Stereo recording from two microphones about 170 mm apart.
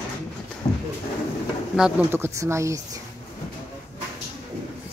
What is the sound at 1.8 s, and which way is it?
Speech, 15° right (ahead or behind).